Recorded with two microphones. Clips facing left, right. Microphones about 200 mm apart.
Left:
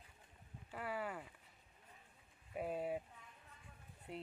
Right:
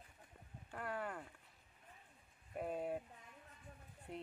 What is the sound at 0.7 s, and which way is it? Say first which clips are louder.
Speech: left 1 dB; 5° left (ahead or behind).